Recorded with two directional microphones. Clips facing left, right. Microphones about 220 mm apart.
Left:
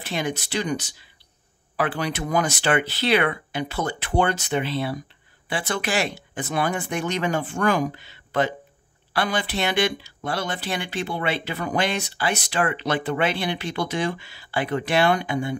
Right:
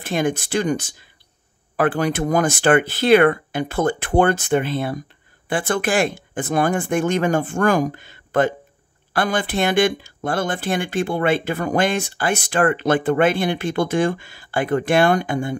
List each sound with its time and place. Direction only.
0.0 s speech: 50° right (ahead or behind)